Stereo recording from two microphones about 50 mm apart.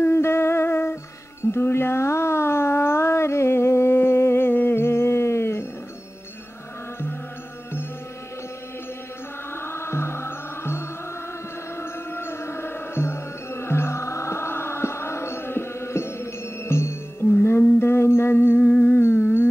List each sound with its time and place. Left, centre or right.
0.0 s music: left
1.4 s a sound: left
9.5 s music: left
17.4 s music: left
18.7 s music: left
18.9 s a sound: left